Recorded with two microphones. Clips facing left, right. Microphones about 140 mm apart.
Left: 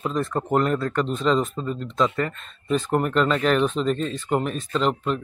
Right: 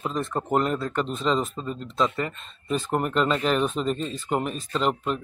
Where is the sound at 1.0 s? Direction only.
Centre (ahead or behind).